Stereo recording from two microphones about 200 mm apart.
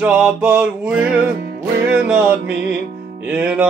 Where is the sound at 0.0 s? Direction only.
5° right (ahead or behind).